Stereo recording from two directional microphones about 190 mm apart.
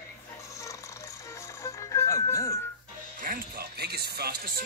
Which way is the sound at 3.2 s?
50° right (ahead or behind).